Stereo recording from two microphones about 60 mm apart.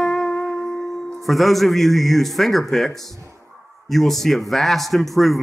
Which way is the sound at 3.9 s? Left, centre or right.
Centre.